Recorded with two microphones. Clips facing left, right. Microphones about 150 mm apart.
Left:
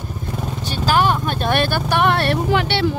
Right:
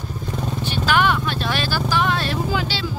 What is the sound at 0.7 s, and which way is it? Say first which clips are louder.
Vehicle: left 2 dB; 40° left (ahead or behind).